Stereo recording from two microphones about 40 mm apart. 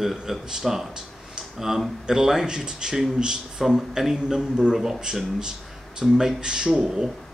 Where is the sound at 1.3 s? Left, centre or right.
Centre.